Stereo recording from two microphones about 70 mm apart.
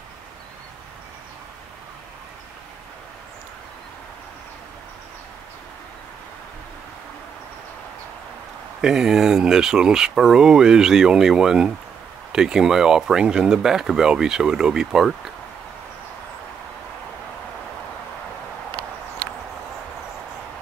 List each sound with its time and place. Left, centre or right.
8.8 s speech: centre